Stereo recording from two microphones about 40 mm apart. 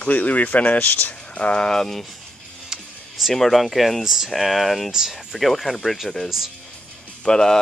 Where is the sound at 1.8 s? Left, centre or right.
Centre.